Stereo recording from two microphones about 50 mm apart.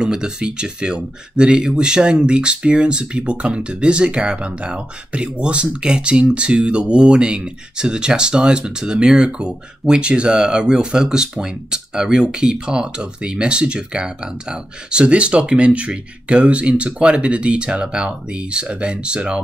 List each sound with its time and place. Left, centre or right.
0.0 s speech: centre